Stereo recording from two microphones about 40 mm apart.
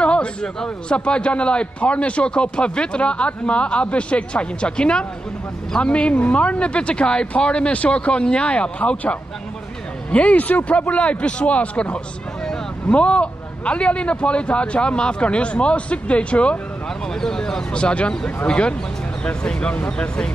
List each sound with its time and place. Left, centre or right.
0.0 s a sound: left
0.8 s a man's voice: left
17.2 s a man's voice: centre; by 20.1 s left